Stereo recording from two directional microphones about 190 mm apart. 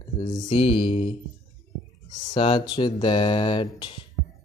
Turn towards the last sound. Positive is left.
turn(degrees=25)  # may be behind; listen again after turning